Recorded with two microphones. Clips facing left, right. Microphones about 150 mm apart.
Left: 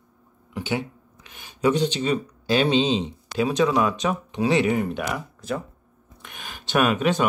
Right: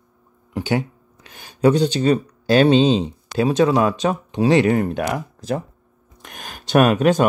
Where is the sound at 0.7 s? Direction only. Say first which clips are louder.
Right 5 dB; 40° right (ahead or behind).